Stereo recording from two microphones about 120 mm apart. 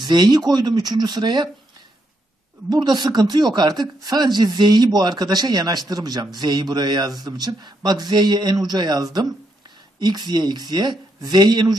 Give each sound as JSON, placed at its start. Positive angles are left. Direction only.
{"t": 0.0, "sound": "speech", "side_deg": -35}
{"t": 2.7, "sound": "speech", "side_deg": -35}